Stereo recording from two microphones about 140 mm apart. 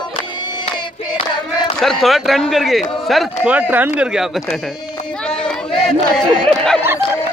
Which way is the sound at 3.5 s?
10° right (ahead or behind).